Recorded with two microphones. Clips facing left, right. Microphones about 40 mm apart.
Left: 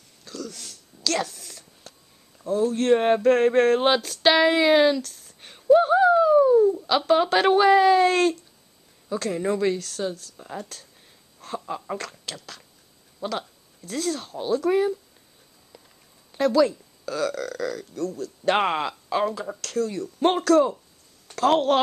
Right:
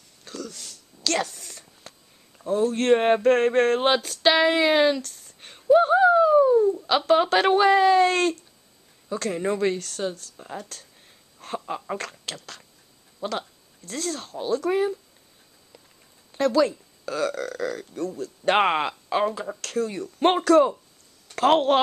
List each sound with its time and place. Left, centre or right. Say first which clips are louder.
0.3 s a sound: even; centre
2.4 s speech: even; right
3.2 s speech: left 1 dB; centre
5.0 s a sound: even; centre
6.9 s speech: even; centre
11.4 s speech: right 1 dB; centre
16.3 s speech: left 1 dB; centre; by 21.7 s right